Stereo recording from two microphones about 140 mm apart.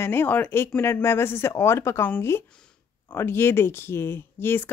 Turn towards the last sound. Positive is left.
turn(degrees=15)  # may be behind; listen again after turning